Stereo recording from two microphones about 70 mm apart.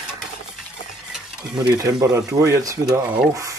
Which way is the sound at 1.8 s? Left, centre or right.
Right.